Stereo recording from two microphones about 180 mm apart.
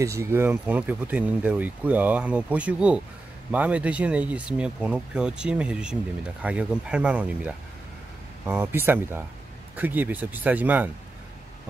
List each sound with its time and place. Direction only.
0.0 s speech: 15° right (ahead or behind)